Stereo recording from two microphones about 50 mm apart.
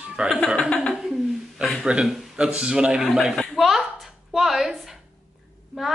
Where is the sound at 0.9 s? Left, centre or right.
Centre.